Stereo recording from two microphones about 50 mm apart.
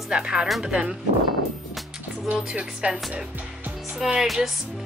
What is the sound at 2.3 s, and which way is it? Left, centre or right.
Speech, centre.